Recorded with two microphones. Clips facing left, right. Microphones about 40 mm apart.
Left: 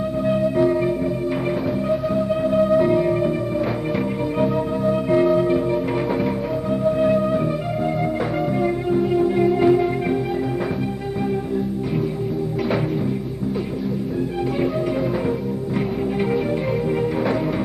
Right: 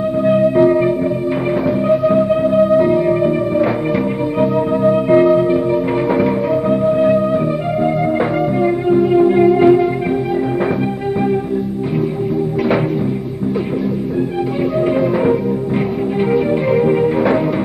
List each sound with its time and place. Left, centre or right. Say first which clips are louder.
0.3 s music: right 7 dB; right
2.4 s music: right 5 dB; centre
4.8 s music: right 7 dB; right
16.8 s music: right 8 dB; right